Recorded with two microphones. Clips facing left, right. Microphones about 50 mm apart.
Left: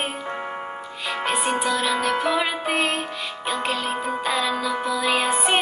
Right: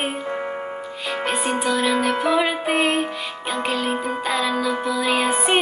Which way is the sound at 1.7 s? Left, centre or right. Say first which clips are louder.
Right 2 dB; centre.